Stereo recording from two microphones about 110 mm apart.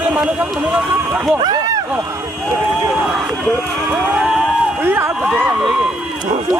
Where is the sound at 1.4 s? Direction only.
35° right (ahead or behind).